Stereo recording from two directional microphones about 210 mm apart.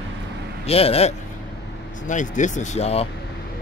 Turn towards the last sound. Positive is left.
turn(degrees=30)  # may be behind; listen again after turning